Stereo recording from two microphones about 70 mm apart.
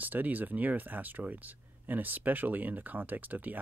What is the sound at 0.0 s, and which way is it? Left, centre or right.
Speech, right.